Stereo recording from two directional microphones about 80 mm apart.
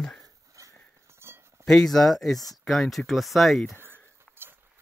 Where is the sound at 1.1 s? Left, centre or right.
Right.